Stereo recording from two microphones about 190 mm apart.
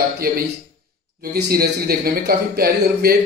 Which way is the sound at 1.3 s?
50° right (ahead or behind).